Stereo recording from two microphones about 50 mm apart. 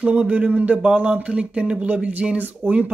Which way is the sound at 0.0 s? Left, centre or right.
Right.